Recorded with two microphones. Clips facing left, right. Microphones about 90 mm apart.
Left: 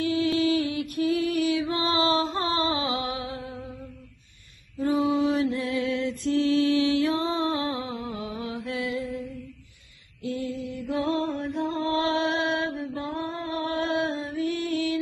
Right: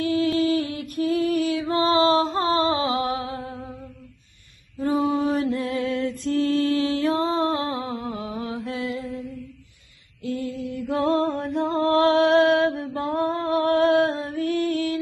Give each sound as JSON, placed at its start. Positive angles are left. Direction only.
{"t": 0.0, "sound": "a sound", "side_deg": -50}
{"t": 0.4, "sound": "music", "side_deg": -45}
{"t": 4.7, "sound": "music", "side_deg": -35}
{"t": 10.2, "sound": "music", "side_deg": -45}